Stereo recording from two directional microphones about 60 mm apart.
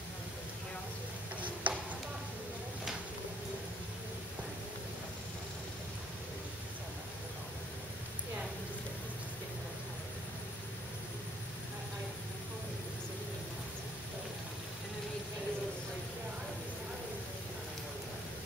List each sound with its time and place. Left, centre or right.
1.4 s tick-tock: right